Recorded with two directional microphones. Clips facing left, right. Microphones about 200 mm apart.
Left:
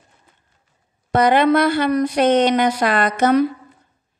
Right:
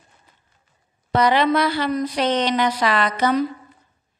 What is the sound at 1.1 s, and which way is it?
Speech, 50° left (ahead or behind).